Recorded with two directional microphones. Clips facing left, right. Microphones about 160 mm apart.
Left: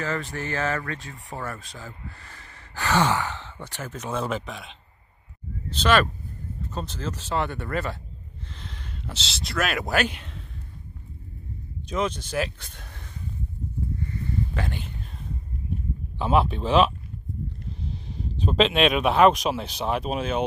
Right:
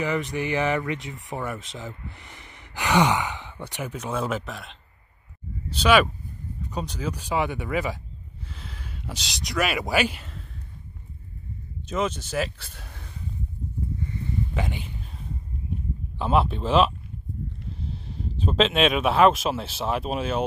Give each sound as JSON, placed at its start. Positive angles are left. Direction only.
{"t": 0.0, "sound": "speech", "side_deg": -15}
{"t": 11.9, "sound": "speech", "side_deg": -5}
{"t": 14.5, "sound": "speech", "side_deg": -15}
{"t": 16.2, "sound": "speech", "side_deg": 0}